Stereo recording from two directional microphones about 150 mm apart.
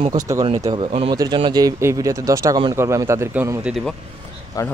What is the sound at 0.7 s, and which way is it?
Speech, 40° right (ahead or behind).